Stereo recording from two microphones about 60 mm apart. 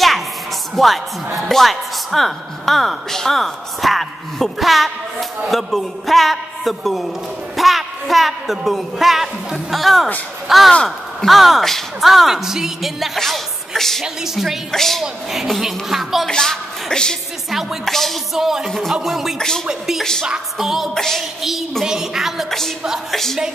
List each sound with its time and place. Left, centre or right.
0.7 s a woman's voice: centre
10.7 s speech: centre
11.2 s a woman's voice: centre
14.0 s a woman's voice: centre
14.7 s a woman's voice: centre
16.3 s a woman's voice: centre
17.5 s a woman's voice: centre
18.7 s speech: centre
18.9 s a woman's voice: centre
19.3 s speech: centre
19.6 s music: centre
20.0 s speech: centre
20.2 s a woman's voice: centre
23.1 s a woman's voice: centre